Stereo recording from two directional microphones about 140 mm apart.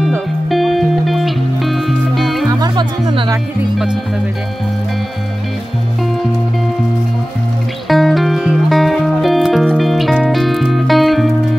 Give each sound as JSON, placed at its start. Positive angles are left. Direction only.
{"t": 0.0, "sound": "music", "side_deg": 0}
{"t": 2.6, "sound": "music", "side_deg": -30}
{"t": 3.7, "sound": "speech", "side_deg": -5}
{"t": 7.9, "sound": "music", "side_deg": 0}